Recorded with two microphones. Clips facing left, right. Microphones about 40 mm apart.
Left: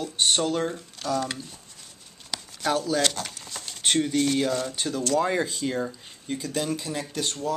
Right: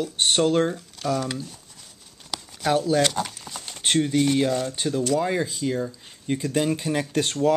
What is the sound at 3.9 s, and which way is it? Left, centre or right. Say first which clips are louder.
Speech: right 3 dB; centre.